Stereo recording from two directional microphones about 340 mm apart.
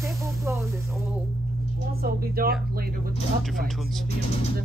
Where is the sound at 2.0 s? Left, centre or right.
Right.